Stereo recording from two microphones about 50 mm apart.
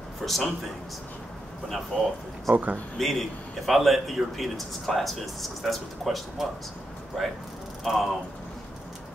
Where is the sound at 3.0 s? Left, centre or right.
Centre.